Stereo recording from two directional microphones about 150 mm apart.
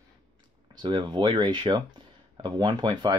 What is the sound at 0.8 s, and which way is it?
Speech, 30° right (ahead or behind).